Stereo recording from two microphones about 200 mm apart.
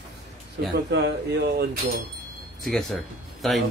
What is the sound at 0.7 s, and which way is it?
Speech, 55° right (ahead or behind).